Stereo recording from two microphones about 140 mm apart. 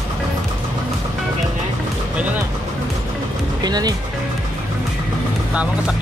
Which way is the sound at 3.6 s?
30° right (ahead or behind).